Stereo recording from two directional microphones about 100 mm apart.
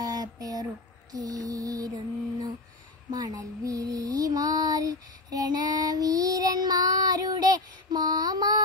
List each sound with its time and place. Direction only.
0.0 s a sound: 40° right (ahead or behind)
1.1 s music: 40° right (ahead or behind)
3.1 s child singing: 40° right (ahead or behind)